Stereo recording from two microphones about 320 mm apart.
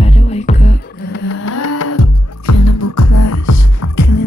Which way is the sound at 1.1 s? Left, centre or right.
Left.